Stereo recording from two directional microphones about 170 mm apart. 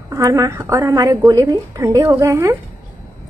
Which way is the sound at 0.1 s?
20° right (ahead or behind).